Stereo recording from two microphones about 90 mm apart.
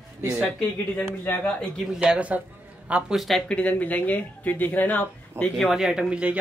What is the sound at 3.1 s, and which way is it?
Speech, centre (ahead or behind).